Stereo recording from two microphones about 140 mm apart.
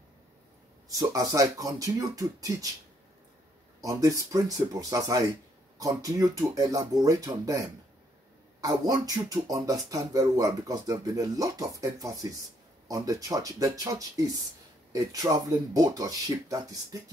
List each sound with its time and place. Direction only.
0.8 s speech: 25° right (ahead or behind)
3.8 s speech: 25° right (ahead or behind)